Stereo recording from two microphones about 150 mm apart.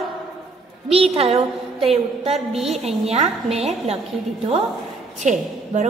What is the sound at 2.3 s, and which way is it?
Speech, centre (ahead or behind).